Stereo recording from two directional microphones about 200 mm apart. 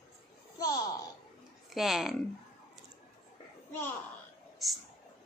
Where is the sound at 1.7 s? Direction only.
Centre (ahead or behind).